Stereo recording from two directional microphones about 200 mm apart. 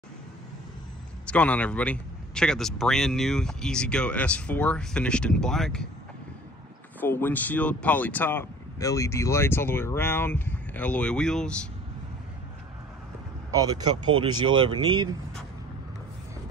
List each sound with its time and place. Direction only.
1.2 s a man's voice: 5° left (ahead or behind)
7.0 s speech: 10° left (ahead or behind)
13.6 s speech: 20° right (ahead or behind)